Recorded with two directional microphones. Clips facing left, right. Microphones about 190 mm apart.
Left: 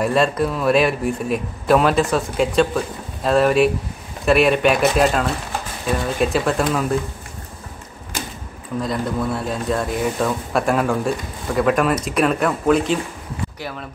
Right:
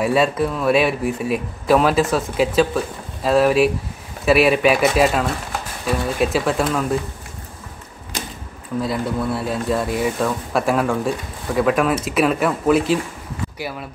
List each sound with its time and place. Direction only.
0.0 s speech: 5° right (ahead or behind)
8.8 s speech: 5° right (ahead or behind)